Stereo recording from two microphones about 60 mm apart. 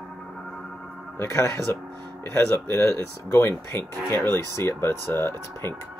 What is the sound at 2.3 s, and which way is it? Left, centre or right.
Speech, left.